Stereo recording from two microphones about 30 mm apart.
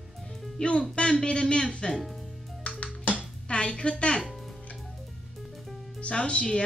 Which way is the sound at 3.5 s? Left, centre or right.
Left.